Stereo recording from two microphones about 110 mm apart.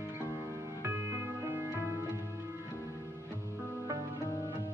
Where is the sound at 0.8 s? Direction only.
25° right (ahead or behind).